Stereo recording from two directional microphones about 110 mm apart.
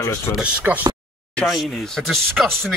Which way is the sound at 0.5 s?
15° right (ahead or behind).